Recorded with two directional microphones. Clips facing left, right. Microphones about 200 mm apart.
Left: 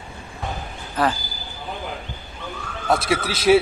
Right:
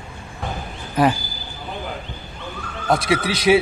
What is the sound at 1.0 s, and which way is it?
Speech, 15° right (ahead or behind).